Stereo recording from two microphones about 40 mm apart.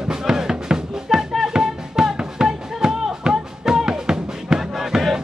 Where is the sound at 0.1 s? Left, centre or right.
Centre.